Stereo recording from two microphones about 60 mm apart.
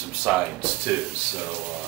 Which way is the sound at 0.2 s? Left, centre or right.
Centre.